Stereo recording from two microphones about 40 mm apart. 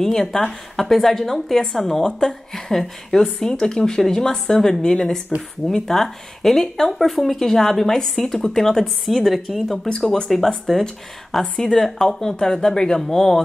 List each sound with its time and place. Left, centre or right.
0.0 s speech: centre
8.8 s a woman's voice: centre
9.8 s speech: centre